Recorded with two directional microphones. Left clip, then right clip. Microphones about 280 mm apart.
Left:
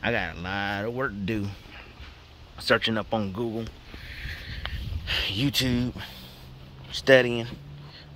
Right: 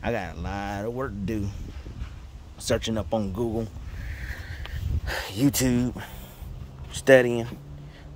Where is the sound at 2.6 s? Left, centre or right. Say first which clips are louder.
Left 3 dB; centre.